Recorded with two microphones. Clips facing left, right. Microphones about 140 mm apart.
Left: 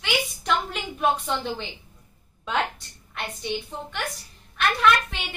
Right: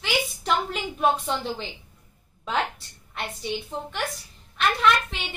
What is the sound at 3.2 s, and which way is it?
A woman's voice, centre (ahead or behind).